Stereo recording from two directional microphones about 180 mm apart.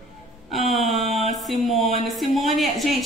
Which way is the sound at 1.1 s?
35° right (ahead or behind).